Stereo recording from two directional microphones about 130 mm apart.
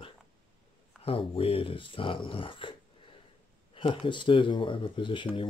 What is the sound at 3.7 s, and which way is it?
Speech, 45° left (ahead or behind).